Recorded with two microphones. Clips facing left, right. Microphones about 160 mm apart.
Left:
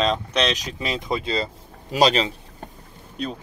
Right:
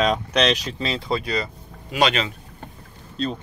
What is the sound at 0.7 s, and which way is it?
Speech, 15° left (ahead or behind).